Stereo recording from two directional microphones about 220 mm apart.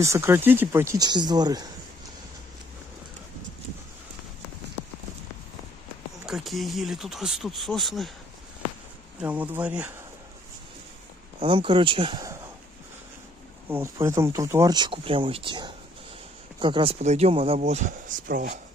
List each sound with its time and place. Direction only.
0.0 s speech: 15° right (ahead or behind)
6.2 s speech: centre (ahead or behind)
9.2 s speech: 5° right (ahead or behind)
11.3 s speech: 25° right (ahead or behind)
13.7 s speech: 10° right (ahead or behind); by 18.6 s 40° right (ahead or behind)